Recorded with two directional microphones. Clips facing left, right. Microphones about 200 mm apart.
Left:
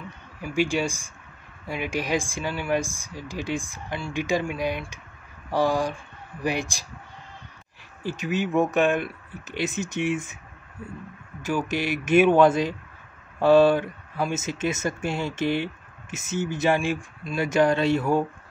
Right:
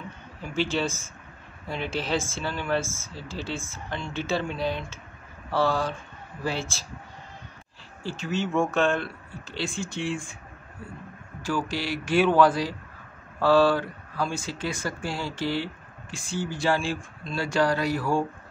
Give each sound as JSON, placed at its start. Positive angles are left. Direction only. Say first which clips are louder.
{"t": 0.4, "sound": "speech", "louder": "left 3 dB", "side_deg": 10}
{"t": 8.0, "sound": "speech", "louder": "left 2 dB", "side_deg": 15}
{"t": 11.4, "sound": "speech", "louder": "left 3 dB", "side_deg": 20}